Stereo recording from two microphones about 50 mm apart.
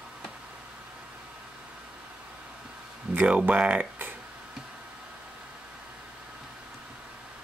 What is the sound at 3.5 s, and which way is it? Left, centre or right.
Speech, right.